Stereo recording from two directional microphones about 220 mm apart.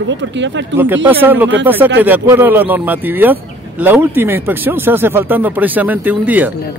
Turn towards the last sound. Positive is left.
turn(degrees=-10)  # may be behind; listen again after turning